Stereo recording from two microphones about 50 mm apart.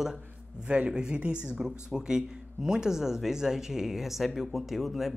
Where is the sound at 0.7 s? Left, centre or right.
Centre.